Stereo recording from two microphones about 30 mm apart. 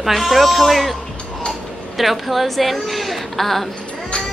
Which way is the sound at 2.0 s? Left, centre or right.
Centre.